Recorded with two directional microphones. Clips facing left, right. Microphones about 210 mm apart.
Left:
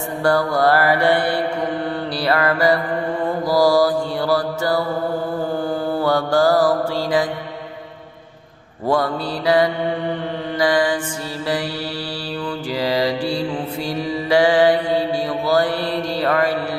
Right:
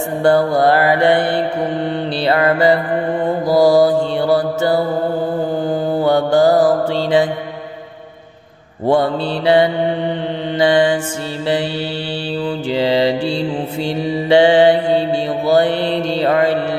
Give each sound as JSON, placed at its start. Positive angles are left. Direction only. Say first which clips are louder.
{"t": 0.2, "sound": "mantra", "louder": "right 4 dB", "side_deg": -25}
{"t": 8.8, "sound": "mantra", "louder": "right 5 dB", "side_deg": -25}
{"t": 12.7, "sound": "mantra", "louder": "right 5 dB", "side_deg": -25}